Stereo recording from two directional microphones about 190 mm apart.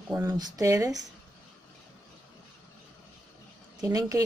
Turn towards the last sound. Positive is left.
turn(degrees=-20)  # may be behind; listen again after turning